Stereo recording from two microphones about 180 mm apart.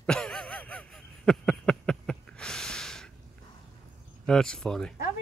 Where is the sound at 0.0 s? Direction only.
5° left (ahead or behind).